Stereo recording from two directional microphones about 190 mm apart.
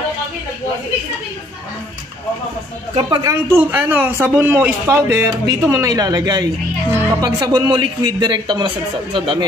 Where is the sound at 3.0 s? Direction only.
25° right (ahead or behind).